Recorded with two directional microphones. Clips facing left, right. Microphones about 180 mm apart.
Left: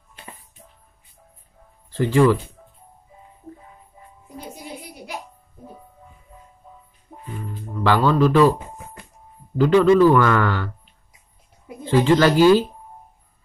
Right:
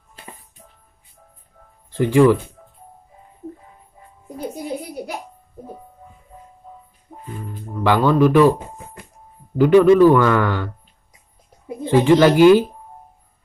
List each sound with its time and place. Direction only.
1.9 s speech: 15° right (ahead or behind)
7.8 s a man's voice: 15° right (ahead or behind)
9.6 s a man's voice: 15° right (ahead or behind)
11.8 s a man's voice: 15° right (ahead or behind)